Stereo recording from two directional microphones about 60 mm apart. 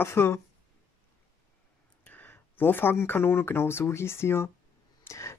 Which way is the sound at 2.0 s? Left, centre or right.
Left.